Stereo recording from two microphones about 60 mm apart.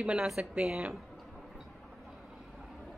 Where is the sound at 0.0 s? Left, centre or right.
Centre.